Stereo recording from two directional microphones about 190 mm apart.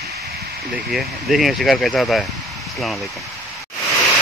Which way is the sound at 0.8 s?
Centre (ahead or behind).